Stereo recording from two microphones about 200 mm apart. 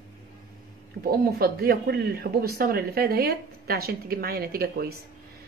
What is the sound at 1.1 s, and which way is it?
A woman's voice, 50° right (ahead or behind).